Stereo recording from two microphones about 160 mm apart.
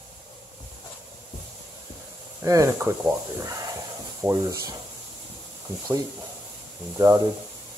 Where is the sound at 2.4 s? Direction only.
20° right (ahead or behind).